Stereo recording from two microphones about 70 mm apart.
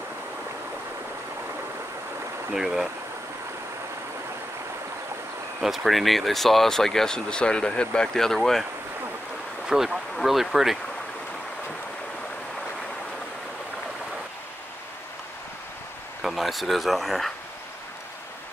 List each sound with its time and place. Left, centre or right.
2.5 s speech: centre
5.6 s speech: centre
9.7 s speech: centre
16.2 s speech: centre